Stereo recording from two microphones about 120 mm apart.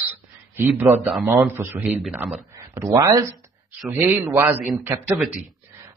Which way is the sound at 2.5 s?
25° right (ahead or behind).